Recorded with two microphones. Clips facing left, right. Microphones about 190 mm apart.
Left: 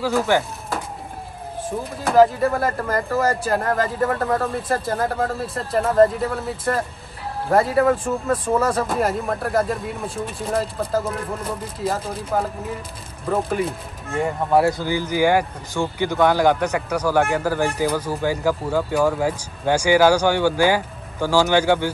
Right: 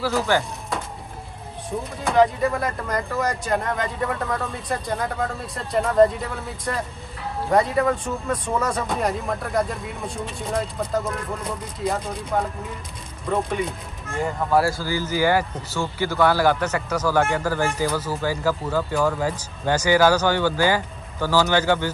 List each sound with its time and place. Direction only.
0.0 s speech: 15° left (ahead or behind)
1.6 s speech: centre (ahead or behind)
14.2 s speech: 20° left (ahead or behind)